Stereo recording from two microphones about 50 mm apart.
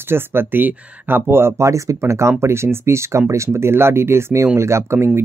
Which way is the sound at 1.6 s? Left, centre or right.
Right.